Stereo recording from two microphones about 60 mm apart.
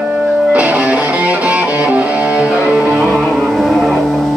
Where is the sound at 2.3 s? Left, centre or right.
Centre.